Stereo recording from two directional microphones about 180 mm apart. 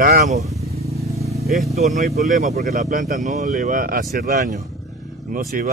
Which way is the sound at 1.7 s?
40° right (ahead or behind).